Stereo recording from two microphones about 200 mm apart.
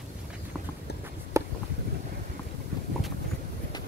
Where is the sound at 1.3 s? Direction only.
15° right (ahead or behind).